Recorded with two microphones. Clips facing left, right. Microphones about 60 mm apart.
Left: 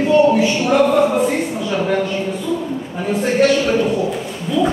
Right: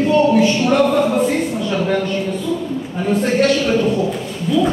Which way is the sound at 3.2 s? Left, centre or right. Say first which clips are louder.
Left 2 dB; centre.